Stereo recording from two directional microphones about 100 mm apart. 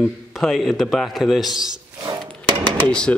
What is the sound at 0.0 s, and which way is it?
Speech, centre (ahead or behind).